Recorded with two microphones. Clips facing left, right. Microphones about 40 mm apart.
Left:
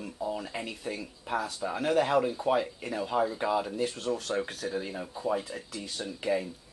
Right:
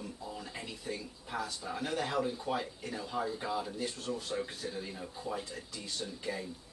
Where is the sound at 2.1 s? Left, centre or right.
Left.